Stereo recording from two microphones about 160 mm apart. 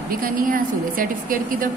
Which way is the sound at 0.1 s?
60° right (ahead or behind).